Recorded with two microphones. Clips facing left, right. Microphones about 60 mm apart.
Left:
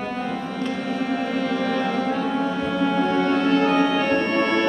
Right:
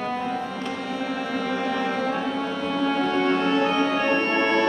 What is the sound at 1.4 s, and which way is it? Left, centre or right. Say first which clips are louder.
Music: left 2 dB; centre.